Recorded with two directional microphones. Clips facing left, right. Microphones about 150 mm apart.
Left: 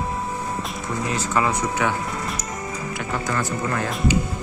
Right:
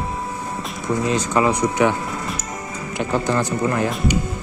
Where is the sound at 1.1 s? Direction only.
20° right (ahead or behind).